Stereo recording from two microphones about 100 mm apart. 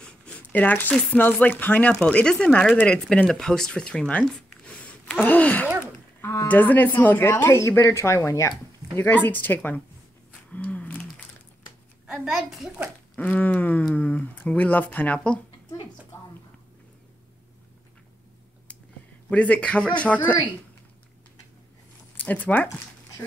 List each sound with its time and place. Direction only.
0.0 s a sound: 10° left (ahead or behind)
1.1 s speech: 20° left (ahead or behind)
10.5 s a sound: 15° left (ahead or behind)
12.1 s a child's voice: centre (ahead or behind)
13.1 s speech: 15° left (ahead or behind)
19.2 s speech: 15° left (ahead or behind)
22.1 s speech: 15° left (ahead or behind)